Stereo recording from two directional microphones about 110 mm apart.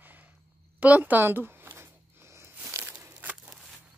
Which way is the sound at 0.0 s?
15° right (ahead or behind).